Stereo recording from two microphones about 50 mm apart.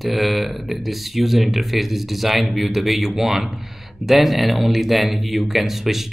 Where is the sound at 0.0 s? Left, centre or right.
Centre.